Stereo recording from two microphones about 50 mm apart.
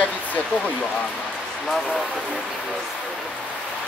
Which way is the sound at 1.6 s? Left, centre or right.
Centre.